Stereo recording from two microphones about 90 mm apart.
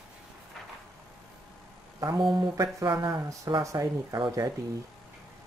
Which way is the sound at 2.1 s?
60° right (ahead or behind).